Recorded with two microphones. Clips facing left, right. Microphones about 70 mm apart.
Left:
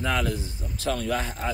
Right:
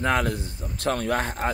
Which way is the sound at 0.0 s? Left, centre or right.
Right.